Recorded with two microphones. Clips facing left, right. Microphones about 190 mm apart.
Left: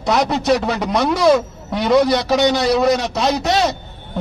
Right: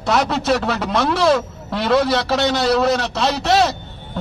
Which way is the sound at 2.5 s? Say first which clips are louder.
Right 1 dB; centre (ahead or behind).